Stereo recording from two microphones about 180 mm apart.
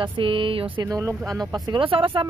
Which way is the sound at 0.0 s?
30° right (ahead or behind).